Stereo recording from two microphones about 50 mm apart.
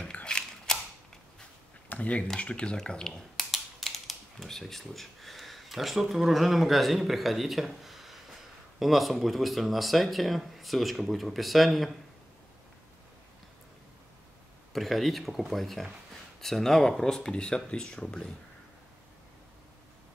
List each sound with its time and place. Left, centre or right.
0.0 s a sound: left
0.7 s mechanisms: centre
1.9 s speech: left
2.8 s speech: centre
14.7 s speech: centre